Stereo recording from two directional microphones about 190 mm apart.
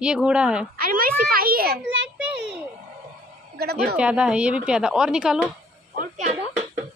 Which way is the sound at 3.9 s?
5° right (ahead or behind).